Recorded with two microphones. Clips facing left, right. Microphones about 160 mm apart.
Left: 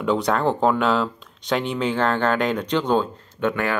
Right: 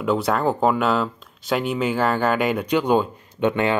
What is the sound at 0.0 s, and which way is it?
Speech, 5° right (ahead or behind).